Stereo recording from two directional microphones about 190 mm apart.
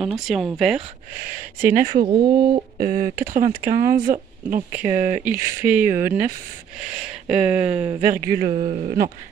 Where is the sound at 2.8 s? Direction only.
50° right (ahead or behind).